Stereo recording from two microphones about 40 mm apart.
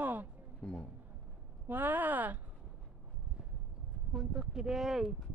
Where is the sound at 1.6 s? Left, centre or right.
Right.